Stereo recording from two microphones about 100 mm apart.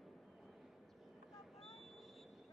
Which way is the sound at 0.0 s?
Centre (ahead or behind).